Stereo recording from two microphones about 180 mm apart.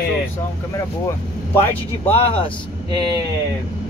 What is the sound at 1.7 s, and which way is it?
Speech, 30° left (ahead or behind).